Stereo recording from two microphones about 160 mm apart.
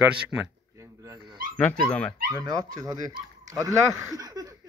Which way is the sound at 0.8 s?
20° right (ahead or behind).